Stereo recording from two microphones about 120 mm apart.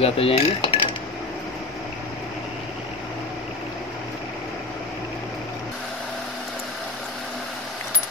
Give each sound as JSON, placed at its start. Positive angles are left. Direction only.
{"t": 0.0, "sound": "speech", "side_deg": 55}